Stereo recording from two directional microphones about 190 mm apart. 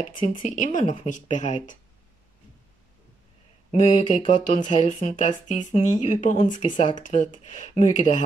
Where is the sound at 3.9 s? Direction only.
35° left (ahead or behind).